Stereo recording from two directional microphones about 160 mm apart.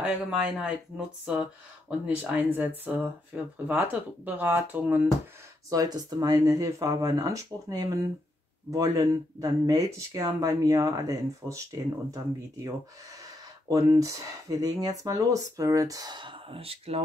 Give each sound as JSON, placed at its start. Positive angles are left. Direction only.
{"t": 0.0, "sound": "speech", "side_deg": -5}
{"t": 5.7, "sound": "speech", "side_deg": -20}
{"t": 13.7, "sound": "speech", "side_deg": -20}